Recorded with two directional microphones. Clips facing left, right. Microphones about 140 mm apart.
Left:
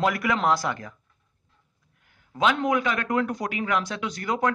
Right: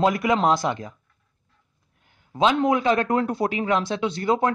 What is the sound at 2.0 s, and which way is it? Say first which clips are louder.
Speech: right 3 dB; 25° right (ahead or behind).